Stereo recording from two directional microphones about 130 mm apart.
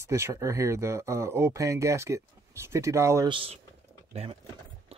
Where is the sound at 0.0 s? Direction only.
20° right (ahead or behind).